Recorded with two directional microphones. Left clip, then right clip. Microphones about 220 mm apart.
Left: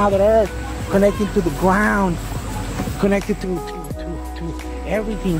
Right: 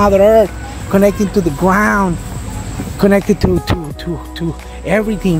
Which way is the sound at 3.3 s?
35° right (ahead or behind).